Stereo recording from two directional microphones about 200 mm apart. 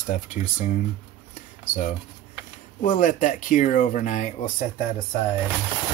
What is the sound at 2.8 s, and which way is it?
Speech, 40° left (ahead or behind).